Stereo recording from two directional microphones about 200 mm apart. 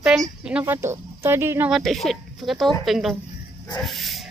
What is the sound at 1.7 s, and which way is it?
Speech, centre (ahead or behind).